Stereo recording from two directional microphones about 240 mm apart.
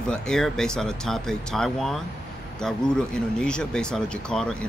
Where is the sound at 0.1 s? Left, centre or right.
Centre.